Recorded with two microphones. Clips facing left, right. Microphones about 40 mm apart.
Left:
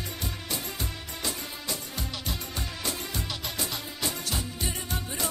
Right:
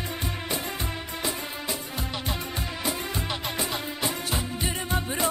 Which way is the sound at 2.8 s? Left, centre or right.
Centre.